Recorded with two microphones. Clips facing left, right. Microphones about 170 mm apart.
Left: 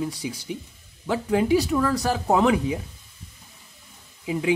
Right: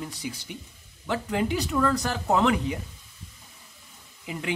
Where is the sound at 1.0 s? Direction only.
10° left (ahead or behind).